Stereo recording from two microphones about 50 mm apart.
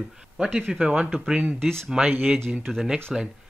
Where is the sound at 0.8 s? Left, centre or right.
Right.